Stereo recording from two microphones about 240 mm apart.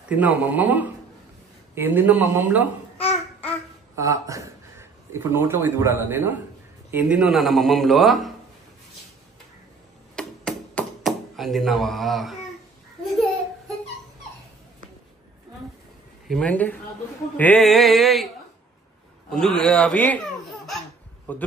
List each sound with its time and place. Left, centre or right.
0.1 s speech: centre
3.0 s babbling: left
3.9 s speech: centre
10.1 s a sound: centre
16.3 s speech: centre
19.3 s speech: centre
21.3 s speech: centre